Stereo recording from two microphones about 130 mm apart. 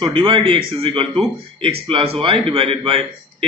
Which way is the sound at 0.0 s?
40° right (ahead or behind).